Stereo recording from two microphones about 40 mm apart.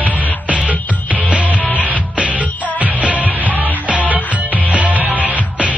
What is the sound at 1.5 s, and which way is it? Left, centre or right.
Music, left.